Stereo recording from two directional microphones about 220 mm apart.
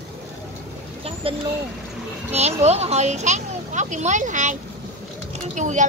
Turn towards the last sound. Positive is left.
turn(degrees=-35)  # may be behind; listen again after turning